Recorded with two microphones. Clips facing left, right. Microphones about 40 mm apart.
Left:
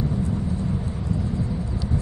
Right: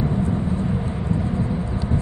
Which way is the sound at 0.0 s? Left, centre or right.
Right.